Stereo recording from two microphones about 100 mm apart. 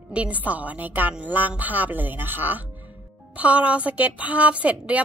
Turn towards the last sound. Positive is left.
turn(degrees=-15)  # may be behind; listen again after turning